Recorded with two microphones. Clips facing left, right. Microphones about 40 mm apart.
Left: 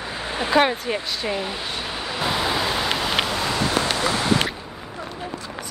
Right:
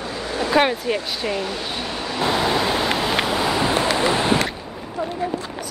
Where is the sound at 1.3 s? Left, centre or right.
Centre.